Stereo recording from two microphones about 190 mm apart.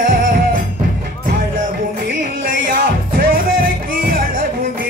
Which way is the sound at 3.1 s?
50° right (ahead or behind).